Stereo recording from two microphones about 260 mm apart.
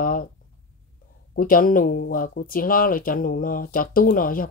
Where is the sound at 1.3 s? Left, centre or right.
Left.